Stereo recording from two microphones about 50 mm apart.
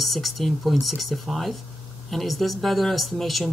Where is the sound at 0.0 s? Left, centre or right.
Centre.